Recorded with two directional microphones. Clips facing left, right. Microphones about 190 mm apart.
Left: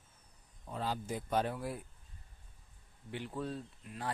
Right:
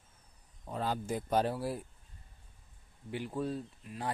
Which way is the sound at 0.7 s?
50° right (ahead or behind).